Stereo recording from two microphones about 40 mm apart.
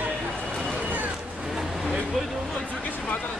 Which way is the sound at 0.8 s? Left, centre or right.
Right.